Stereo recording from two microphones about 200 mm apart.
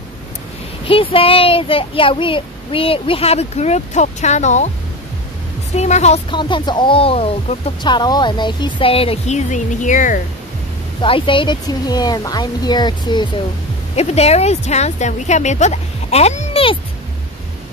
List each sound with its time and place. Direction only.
0.8 s speech: 25° left (ahead or behind)
5.8 s speech: 35° left (ahead or behind)
11.0 s speech: 25° left (ahead or behind)
13.9 s speech: 30° left (ahead or behind)